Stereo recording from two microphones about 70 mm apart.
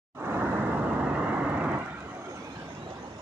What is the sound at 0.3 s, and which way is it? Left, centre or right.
Vehicle, right.